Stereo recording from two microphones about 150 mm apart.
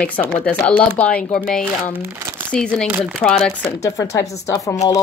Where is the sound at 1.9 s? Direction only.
15° right (ahead or behind).